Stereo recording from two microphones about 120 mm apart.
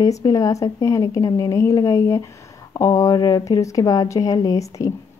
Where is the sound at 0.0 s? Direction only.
30° left (ahead or behind).